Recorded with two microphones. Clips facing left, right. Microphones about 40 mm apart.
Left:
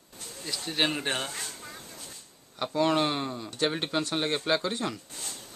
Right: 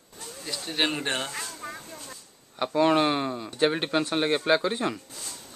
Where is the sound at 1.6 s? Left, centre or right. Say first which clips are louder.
Right 7 dB; right.